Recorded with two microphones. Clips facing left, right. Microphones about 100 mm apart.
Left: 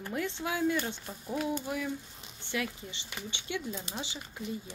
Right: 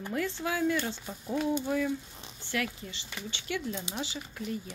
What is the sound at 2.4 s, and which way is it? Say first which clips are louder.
Speech: right 1 dB; 20° left (ahead or behind).